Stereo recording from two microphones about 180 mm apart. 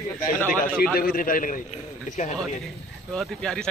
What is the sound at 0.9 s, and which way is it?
A man's voice, 55° left (ahead or behind).